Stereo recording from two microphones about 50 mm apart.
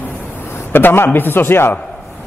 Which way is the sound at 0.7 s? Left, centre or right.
Left.